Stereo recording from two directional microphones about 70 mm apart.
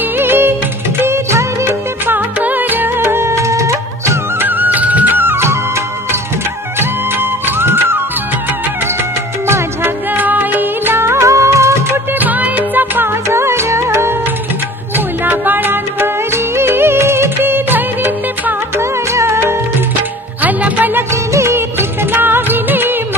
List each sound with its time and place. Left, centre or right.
0.2 s music: right
1.0 s music of bollywood: right
2.0 s music: right
4.5 s music: right
6.8 s music: right
9.5 s music: right
12.1 s music: right
13.3 s music: right
15.0 s music: right
18.8 s music: right
20.4 s music: right
21.1 s music of bollywood: right